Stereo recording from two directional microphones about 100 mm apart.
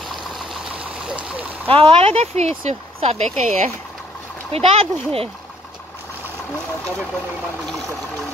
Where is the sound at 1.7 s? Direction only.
65° right (ahead or behind); by 3.2 s 90° right.